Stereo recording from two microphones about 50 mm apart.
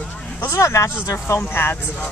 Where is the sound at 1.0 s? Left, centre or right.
Left.